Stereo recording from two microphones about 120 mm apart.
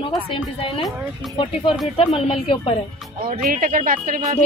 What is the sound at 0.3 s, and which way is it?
A woman's voice, 50° left (ahead or behind).